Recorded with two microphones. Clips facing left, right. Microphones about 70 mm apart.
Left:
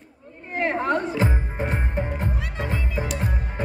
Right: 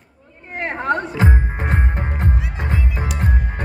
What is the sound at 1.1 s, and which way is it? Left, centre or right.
Music, right.